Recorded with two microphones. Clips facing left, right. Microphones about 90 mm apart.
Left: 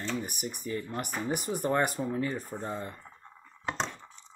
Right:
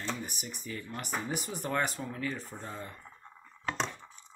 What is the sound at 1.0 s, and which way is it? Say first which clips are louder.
Speech: left 3 dB; 55° left (ahead or behind).